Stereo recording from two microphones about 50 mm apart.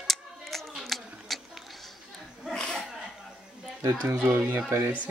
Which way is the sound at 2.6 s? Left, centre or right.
Centre.